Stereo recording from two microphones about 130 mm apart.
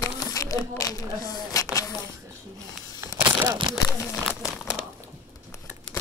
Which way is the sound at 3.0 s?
20° right (ahead or behind).